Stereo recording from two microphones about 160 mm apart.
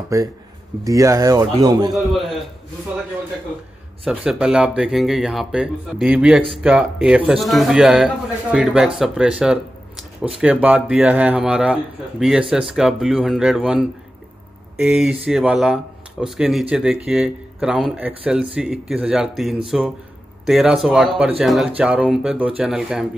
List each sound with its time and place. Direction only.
0.1 s speech: 20° right (ahead or behind)
2.0 s speech: centre (ahead or behind)
4.0 s speech: 5° right (ahead or behind)